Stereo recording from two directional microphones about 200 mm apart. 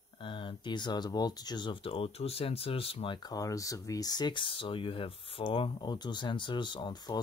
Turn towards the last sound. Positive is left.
turn(degrees=20)  # may be behind; listen again after turning